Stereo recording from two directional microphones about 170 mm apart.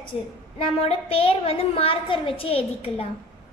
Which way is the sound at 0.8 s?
35° left (ahead or behind).